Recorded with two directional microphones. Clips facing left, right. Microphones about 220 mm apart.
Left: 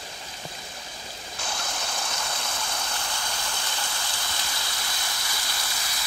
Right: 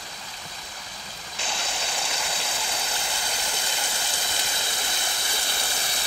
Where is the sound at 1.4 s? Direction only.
5° right (ahead or behind).